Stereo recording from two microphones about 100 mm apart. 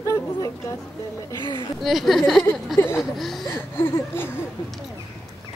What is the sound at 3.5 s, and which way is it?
Speech, 20° left (ahead or behind).